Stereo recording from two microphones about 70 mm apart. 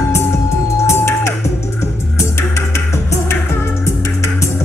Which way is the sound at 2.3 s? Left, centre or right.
Left.